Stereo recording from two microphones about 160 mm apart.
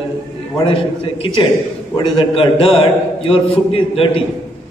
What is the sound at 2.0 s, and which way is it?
A man's voice, 30° left (ahead or behind).